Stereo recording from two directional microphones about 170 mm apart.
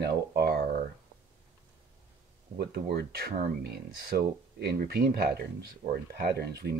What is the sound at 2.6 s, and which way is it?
Speech, 70° right (ahead or behind).